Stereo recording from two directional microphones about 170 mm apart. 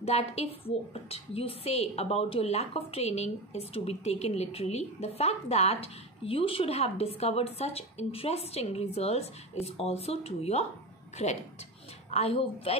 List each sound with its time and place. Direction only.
0.0 s a woman's voice: 40° left (ahead or behind)
12.1 s a woman's voice: 35° left (ahead or behind)